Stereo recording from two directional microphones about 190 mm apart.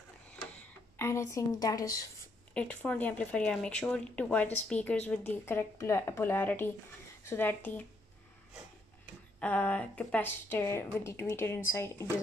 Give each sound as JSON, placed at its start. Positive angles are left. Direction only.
{"t": 0.9, "sound": "speech", "side_deg": 15}
{"t": 2.5, "sound": "speech", "side_deg": 5}
{"t": 9.4, "sound": "speech", "side_deg": 5}